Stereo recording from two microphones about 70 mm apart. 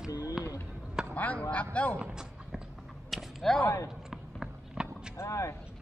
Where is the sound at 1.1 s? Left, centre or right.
Left.